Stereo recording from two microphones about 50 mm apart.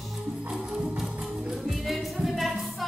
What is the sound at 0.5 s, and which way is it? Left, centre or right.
Music, centre.